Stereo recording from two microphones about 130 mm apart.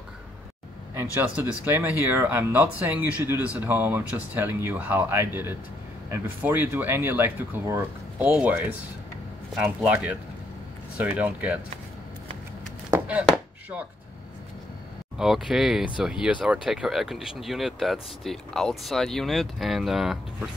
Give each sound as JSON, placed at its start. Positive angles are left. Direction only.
{"t": 0.9, "sound": "speech", "side_deg": -15}
{"t": 9.6, "sound": "speech", "side_deg": -10}
{"t": 15.1, "sound": "speech", "side_deg": -5}